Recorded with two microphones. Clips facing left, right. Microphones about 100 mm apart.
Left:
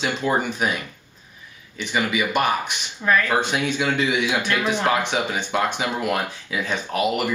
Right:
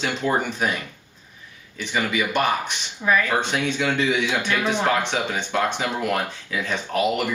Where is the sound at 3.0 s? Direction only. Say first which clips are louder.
Left 1 dB; 5° right (ahead or behind).